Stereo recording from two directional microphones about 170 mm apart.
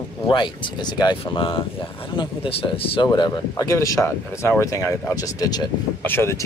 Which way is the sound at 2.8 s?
30° left (ahead or behind).